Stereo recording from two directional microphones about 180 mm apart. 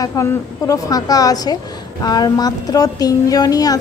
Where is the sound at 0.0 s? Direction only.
15° left (ahead or behind).